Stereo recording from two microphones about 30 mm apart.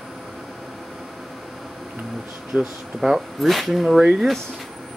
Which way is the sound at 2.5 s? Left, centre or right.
Centre.